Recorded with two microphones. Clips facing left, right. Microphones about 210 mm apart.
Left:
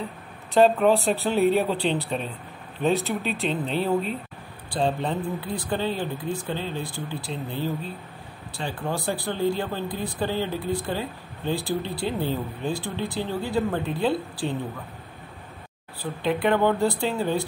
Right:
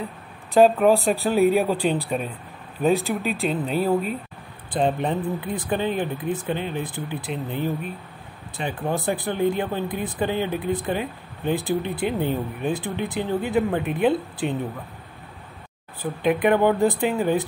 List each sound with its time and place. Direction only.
0.6 s speech: 10° right (ahead or behind)
4.6 s speech: 20° right (ahead or behind)
16.0 s speech: 15° right (ahead or behind)